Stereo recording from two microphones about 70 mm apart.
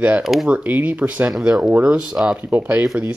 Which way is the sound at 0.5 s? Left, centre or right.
Right.